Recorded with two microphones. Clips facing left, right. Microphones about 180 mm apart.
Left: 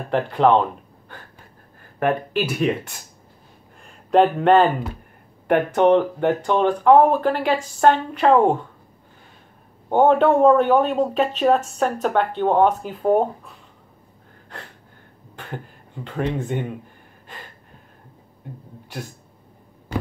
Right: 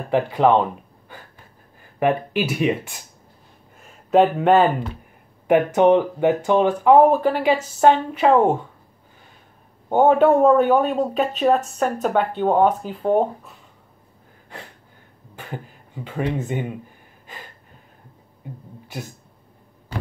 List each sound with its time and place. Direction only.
0.1 s speech: 5° right (ahead or behind)
3.8 s speech: 5° right (ahead or behind)
9.8 s speech: 5° right (ahead or behind)
15.3 s speech: 5° right (ahead or behind)